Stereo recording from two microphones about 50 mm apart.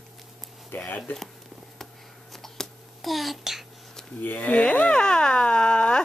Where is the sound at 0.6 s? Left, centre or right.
Left.